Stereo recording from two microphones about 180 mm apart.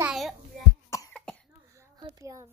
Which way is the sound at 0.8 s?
20° left (ahead or behind).